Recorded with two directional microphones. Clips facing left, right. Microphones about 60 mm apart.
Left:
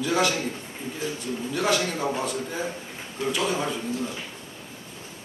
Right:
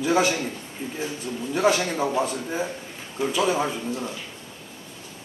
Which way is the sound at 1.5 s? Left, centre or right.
Right.